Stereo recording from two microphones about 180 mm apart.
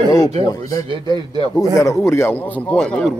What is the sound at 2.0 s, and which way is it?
A man's voice, 15° left (ahead or behind).